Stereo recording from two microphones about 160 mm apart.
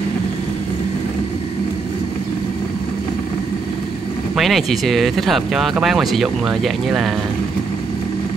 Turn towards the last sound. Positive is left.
turn(degrees=0)  # may be behind; listen again after turning